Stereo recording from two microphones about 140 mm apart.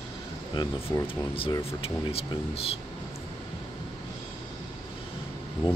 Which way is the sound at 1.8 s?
45° left (ahead or behind).